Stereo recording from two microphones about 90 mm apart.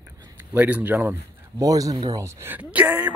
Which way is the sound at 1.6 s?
40° right (ahead or behind).